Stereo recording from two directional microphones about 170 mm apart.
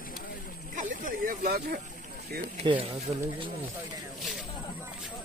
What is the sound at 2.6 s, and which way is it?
Speech, 35° right (ahead or behind).